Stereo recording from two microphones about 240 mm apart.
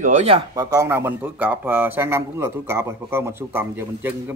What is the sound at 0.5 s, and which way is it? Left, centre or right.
A man's voice, centre.